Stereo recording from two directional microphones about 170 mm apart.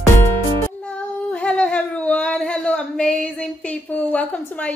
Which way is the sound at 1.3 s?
5° left (ahead or behind).